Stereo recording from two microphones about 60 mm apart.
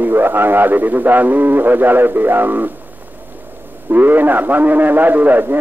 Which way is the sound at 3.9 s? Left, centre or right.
Right.